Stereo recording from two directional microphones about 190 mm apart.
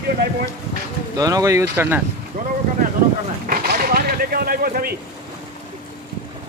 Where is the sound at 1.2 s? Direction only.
20° right (ahead or behind).